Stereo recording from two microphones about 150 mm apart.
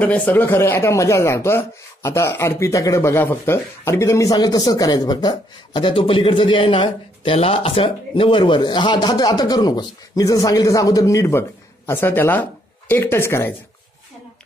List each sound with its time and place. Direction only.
0.0 s speech: 10° left (ahead or behind)